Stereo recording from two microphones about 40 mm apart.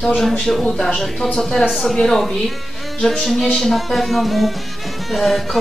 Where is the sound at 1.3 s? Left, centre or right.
Centre.